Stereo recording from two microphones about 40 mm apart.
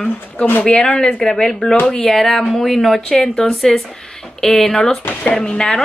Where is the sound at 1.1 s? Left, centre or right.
Centre.